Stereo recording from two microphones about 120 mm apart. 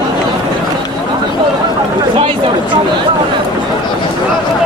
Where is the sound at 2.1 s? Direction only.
45° right (ahead or behind).